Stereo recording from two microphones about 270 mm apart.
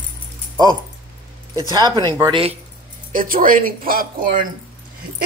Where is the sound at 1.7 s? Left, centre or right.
Centre.